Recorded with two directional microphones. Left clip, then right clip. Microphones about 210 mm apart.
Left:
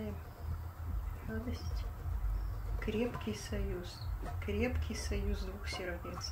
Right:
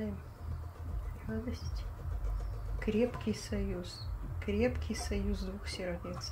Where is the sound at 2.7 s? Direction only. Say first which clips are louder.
Right 4 dB; 35° right (ahead or behind).